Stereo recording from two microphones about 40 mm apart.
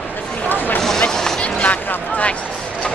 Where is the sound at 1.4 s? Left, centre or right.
Left.